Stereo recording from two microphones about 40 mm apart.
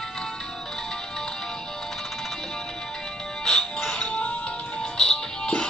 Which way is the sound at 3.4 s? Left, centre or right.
Centre.